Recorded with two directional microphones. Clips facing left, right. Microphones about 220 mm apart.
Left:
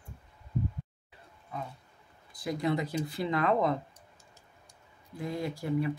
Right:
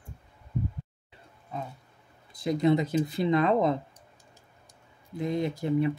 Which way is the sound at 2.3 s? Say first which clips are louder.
Right 7 dB; 25° right (ahead or behind).